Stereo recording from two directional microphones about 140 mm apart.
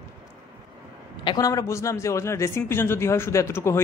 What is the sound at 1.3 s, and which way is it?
A man's voice, 25° left (ahead or behind).